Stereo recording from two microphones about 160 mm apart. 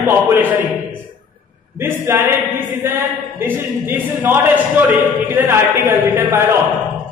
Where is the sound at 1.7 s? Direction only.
15° right (ahead or behind).